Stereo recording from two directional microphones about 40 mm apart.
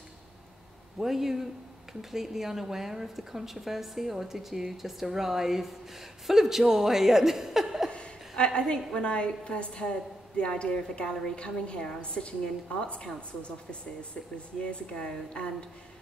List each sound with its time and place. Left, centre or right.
0.9 s speech: centre
7.9 s a woman's voice: left